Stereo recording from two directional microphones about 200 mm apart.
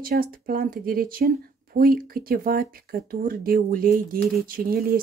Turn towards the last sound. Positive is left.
turn(degrees=-45)  # may be behind; listen again after turning